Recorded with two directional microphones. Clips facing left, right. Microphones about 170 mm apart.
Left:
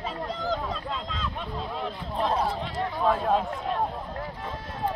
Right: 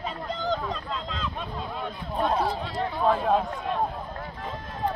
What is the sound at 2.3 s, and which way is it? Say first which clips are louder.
A man's voice: right 1 dB; centre (ahead or behind).